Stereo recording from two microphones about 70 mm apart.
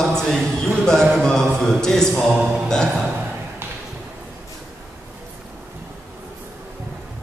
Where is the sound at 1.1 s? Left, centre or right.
Centre.